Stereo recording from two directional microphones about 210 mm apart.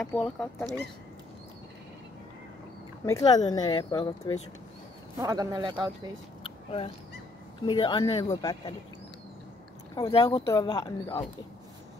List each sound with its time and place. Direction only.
0.0 s speech: 5° left (ahead or behind)
3.1 s speech: 15° left (ahead or behind)
5.2 s speech: 15° right (ahead or behind)
7.6 s speech: 20° left (ahead or behind)
9.9 s speech: 20° left (ahead or behind)